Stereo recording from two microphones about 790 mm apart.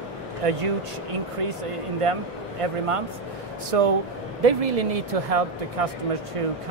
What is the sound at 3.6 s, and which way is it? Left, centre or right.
Speech, right.